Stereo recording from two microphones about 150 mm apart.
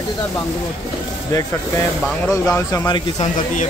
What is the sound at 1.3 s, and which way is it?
Speech, 20° left (ahead or behind).